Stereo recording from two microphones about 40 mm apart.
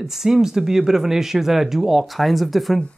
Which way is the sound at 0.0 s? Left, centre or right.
Centre.